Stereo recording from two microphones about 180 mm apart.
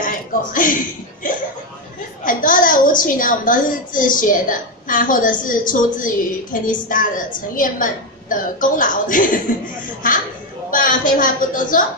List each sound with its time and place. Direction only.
0.0 s a woman's voice: 50° left (ahead or behind)
10.7 s a woman's voice: 50° left (ahead or behind)